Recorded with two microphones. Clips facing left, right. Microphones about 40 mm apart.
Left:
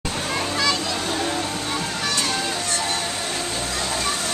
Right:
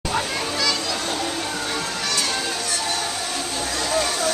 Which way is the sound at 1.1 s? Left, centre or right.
Centre.